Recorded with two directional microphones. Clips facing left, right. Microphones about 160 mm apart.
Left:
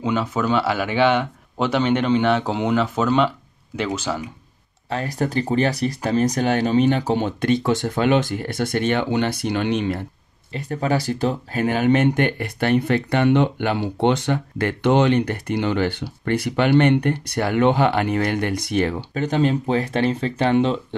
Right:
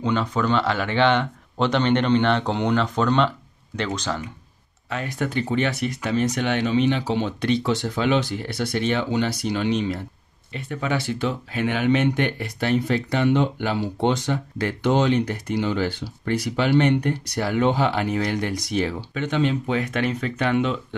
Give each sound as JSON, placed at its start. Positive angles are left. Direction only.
{"t": 0.0, "sound": "speech", "side_deg": 5}
{"t": 4.8, "sound": "speech", "side_deg": 35}
{"t": 10.5, "sound": "speech", "side_deg": 40}
{"t": 19.1, "sound": "speech", "side_deg": 40}